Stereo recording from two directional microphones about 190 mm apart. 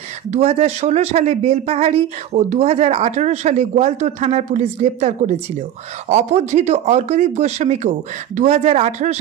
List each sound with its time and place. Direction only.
0.3 s speech: 35° right (ahead or behind)